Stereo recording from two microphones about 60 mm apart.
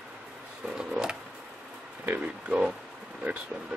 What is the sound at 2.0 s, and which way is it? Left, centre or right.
Speech, right.